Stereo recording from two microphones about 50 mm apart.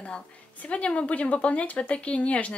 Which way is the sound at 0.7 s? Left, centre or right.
Left.